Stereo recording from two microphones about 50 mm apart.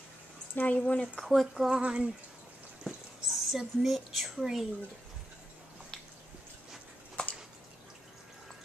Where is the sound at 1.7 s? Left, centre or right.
Centre.